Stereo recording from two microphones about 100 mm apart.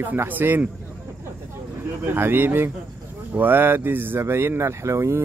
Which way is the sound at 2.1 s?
20° right (ahead or behind).